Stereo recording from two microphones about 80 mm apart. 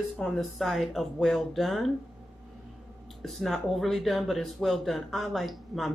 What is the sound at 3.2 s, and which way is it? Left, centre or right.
Speech, centre.